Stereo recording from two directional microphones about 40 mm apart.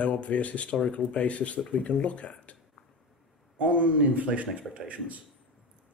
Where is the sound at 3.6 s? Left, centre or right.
Right.